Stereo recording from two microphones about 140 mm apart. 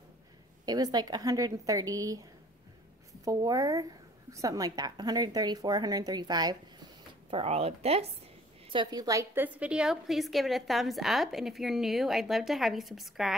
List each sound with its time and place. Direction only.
0.7 s a woman's voice: 30° right (ahead or behind)
7.2 s a woman's voice: 45° right (ahead or behind)
8.6 s a woman's voice: 30° right (ahead or behind); by 13.3 s centre (ahead or behind)